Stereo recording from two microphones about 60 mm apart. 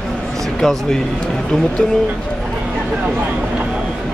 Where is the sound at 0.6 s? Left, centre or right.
Centre.